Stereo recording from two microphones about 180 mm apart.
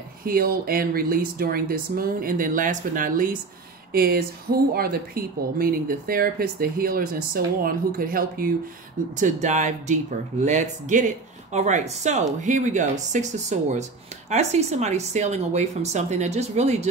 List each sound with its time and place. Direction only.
0.2 s a woman's voice: 55° right (ahead or behind); by 16.8 s 35° right (ahead or behind)